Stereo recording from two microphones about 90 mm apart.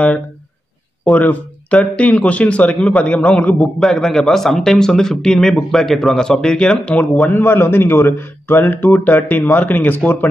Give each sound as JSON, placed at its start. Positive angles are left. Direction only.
{"t": 1.1, "sound": "speech", "side_deg": 15}